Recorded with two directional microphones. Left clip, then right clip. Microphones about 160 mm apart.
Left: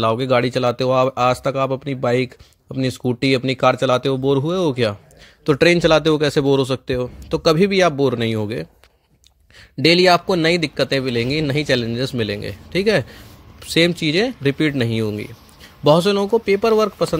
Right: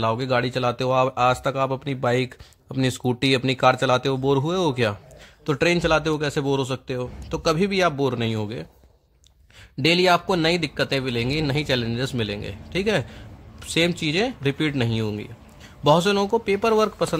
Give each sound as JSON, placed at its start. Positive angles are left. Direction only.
{"t": 0.0, "sound": "a man's voice", "side_deg": 25}
{"t": 5.4, "sound": "a man's voice", "side_deg": 30}
{"t": 9.8, "sound": "a man's voice", "side_deg": 30}